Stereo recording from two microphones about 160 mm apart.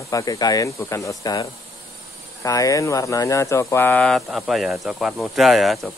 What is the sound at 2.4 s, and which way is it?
Speech, 20° left (ahead or behind).